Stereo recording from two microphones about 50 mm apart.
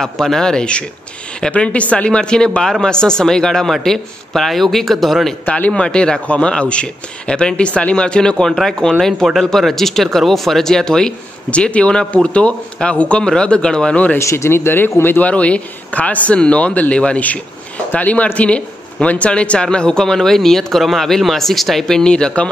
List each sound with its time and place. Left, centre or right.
0.0 s speech: centre
5.7 s speech: centre
11.5 s speech: left
14.2 s speech: left
15.2 s speech: left